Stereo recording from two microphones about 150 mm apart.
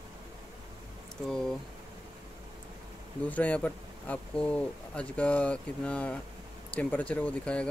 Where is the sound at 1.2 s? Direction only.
5° left (ahead or behind).